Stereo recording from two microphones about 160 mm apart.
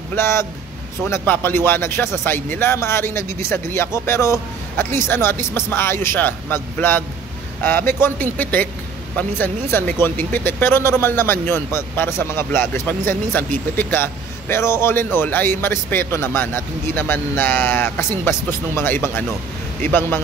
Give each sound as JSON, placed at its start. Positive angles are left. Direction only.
{"t": 0.1, "sound": "speech", "side_deg": 15}